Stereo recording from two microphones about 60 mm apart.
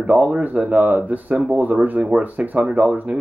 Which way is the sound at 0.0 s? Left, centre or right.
Right.